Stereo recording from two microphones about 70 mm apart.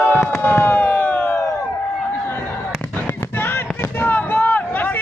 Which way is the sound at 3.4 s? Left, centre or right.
Left.